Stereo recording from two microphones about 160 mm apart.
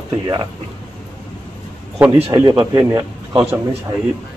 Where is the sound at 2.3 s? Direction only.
25° right (ahead or behind).